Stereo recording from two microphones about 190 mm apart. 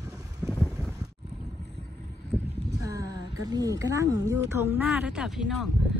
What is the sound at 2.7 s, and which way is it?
Speech, 15° right (ahead or behind).